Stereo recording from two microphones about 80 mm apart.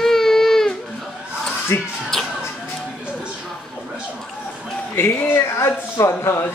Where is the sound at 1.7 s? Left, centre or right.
Left.